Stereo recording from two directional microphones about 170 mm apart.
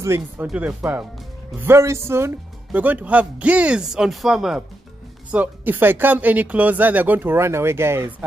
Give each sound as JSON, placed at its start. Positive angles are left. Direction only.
{"t": 0.0, "sound": "speech", "side_deg": -15}